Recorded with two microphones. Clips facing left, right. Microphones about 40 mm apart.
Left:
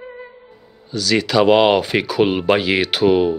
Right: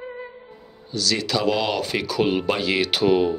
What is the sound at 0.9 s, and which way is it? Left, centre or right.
Speech, left.